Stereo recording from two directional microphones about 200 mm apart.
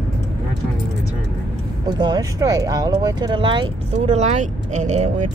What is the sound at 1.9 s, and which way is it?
Speech, 20° right (ahead or behind).